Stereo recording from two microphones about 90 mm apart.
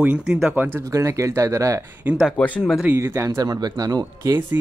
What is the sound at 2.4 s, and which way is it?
Speech, 15° left (ahead or behind).